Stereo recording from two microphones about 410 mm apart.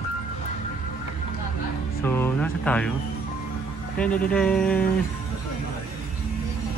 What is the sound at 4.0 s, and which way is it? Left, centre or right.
Speech, centre.